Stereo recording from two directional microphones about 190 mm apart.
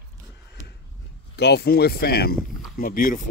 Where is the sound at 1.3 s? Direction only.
60° left (ahead or behind).